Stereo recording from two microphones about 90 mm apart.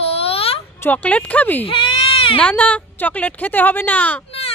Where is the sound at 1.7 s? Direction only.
70° left (ahead or behind).